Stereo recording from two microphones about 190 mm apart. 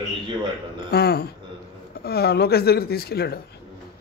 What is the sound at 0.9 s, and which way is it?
A man's voice, 55° left (ahead or behind).